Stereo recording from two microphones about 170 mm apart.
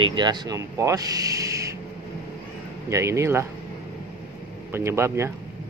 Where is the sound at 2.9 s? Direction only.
15° right (ahead or behind).